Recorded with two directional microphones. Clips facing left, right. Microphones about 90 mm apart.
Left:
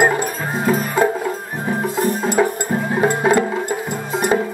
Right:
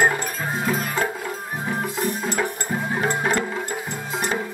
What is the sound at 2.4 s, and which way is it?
Music, 15° left (ahead or behind).